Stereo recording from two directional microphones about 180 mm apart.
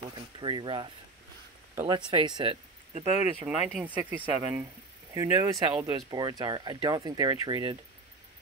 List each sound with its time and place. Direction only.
0.4 s speech: 25° right (ahead or behind)
3.4 s speech: 5° right (ahead or behind); by 7.7 s 25° right (ahead or behind)